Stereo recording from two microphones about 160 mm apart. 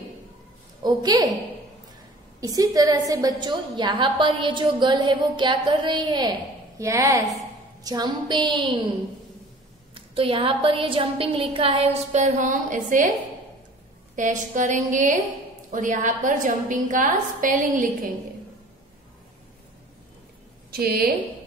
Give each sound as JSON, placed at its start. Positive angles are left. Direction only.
{"t": 0.8, "sound": "a woman's voice", "side_deg": -25}
{"t": 2.4, "sound": "a woman's voice", "side_deg": -20}
{"t": 9.9, "sound": "a woman's voice", "side_deg": -35}
{"t": 14.1, "sound": "a woman's voice", "side_deg": -50}
{"t": 20.7, "sound": "a woman's voice", "side_deg": -70}